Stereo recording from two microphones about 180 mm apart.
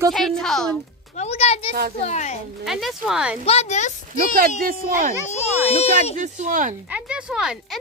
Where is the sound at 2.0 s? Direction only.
40° left (ahead or behind).